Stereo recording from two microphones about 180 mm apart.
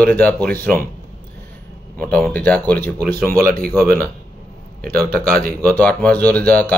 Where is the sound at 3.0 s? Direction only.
50° right (ahead or behind).